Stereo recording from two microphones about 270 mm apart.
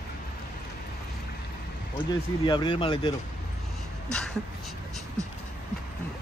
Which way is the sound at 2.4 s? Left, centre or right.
Centre.